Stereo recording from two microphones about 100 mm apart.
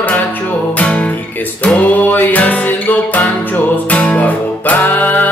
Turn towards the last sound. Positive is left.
turn(degrees=15)  # may be behind; listen again after turning